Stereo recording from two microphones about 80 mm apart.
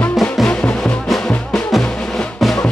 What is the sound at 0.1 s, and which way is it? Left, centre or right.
Music, centre.